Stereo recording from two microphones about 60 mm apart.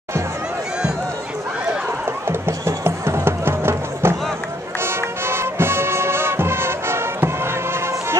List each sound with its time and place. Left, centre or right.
2.2 s music: right